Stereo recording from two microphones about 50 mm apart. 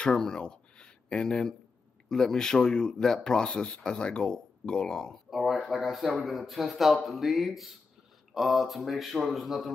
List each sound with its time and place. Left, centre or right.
0.0 s speech: centre
5.3 s a sound: centre
5.7 s speech: centre